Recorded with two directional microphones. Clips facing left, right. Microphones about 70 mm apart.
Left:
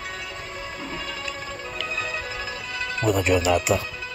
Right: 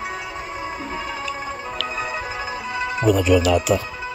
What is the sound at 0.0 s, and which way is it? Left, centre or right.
Music, centre.